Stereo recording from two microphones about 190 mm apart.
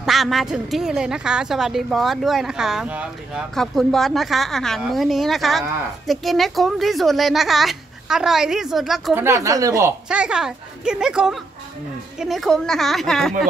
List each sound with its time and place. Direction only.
0.0 s a woman's voice: centre (ahead or behind)
9.2 s speech: 15° right (ahead or behind)
10.0 s a woman's voice: 5° right (ahead or behind)